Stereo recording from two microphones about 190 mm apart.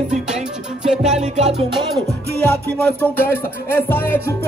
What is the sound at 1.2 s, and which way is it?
Music, 35° right (ahead or behind).